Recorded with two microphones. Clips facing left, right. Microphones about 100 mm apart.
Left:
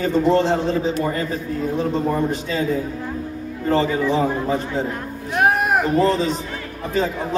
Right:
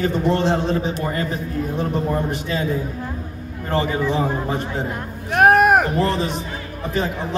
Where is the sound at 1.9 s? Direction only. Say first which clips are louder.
Left 2 dB; 15° right (ahead or behind).